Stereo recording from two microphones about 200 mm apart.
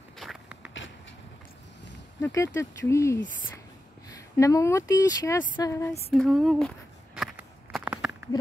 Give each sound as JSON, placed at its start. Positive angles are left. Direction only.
{"t": 0.2, "sound": "walk", "side_deg": -5}
{"t": 2.2, "sound": "speech", "side_deg": 15}
{"t": 4.4, "sound": "speech", "side_deg": 15}
{"t": 6.1, "sound": "a sound", "side_deg": 0}